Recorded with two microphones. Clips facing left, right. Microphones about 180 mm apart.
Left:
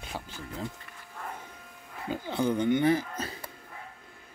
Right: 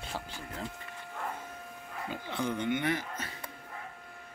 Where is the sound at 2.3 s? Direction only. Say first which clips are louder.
Left 6 dB; 35° left (ahead or behind).